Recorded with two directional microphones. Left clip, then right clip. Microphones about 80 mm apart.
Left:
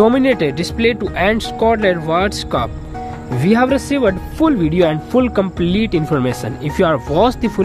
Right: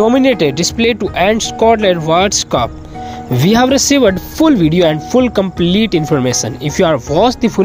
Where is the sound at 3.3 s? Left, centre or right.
Right.